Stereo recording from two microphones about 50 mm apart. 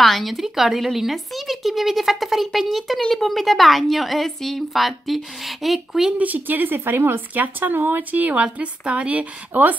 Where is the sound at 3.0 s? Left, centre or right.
Centre.